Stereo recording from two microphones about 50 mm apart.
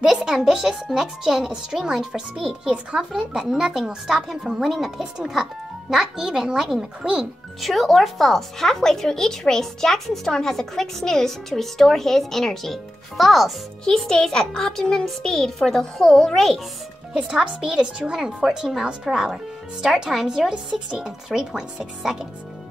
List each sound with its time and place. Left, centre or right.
0.0 s music: centre
0.3 s speech: centre
7.6 s speech: centre
17.1 s speech: centre